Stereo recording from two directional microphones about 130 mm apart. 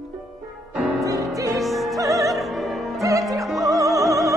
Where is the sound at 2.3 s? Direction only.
Centre (ahead or behind).